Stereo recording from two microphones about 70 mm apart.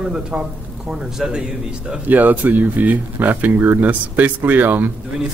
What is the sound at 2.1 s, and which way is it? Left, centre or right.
A man's voice, right.